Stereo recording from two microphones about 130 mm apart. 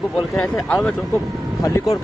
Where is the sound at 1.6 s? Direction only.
25° left (ahead or behind).